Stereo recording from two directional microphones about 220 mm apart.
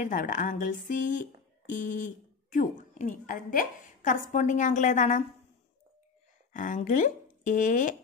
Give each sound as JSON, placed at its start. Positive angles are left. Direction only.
{"t": 0.0, "sound": "speech", "side_deg": 35}
{"t": 6.5, "sound": "speech", "side_deg": 35}